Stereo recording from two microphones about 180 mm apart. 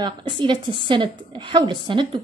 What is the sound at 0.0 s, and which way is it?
Speech, 25° right (ahead or behind).